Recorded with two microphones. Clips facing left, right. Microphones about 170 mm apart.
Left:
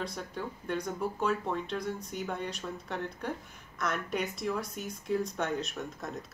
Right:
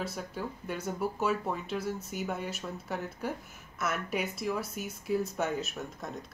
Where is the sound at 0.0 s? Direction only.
5° right (ahead or behind).